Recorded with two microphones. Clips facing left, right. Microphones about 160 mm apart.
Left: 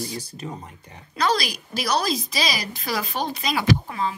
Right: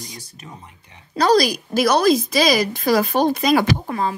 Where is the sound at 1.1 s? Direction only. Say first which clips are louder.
Right 8 dB; 40° right (ahead or behind).